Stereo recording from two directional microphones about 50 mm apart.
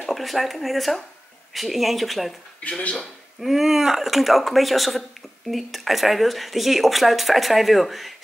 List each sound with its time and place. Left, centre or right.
0.0 s speech: centre
2.8 s speech: left
3.3 s speech: centre